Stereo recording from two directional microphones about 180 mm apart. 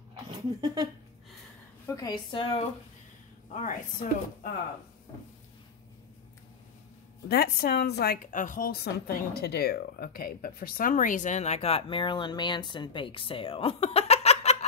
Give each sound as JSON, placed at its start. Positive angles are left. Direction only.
{"t": 0.3, "sound": "speech", "side_deg": -25}
{"t": 1.9, "sound": "a woman's voice", "side_deg": 20}
{"t": 3.5, "sound": "a woman's voice", "side_deg": 45}
{"t": 7.2, "sound": "a woman's voice", "side_deg": 60}